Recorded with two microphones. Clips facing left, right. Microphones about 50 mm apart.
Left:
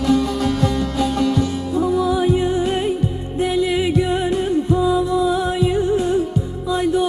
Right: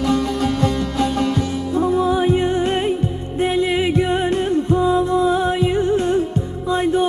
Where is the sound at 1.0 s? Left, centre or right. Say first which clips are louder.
Even; centre.